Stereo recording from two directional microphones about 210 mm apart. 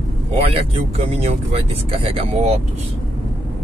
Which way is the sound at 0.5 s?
30° right (ahead or behind).